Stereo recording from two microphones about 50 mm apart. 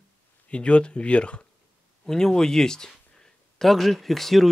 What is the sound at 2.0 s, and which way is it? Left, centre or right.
Speech, centre.